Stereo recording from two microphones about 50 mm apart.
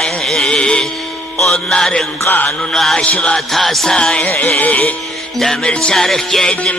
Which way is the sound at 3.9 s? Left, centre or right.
Centre.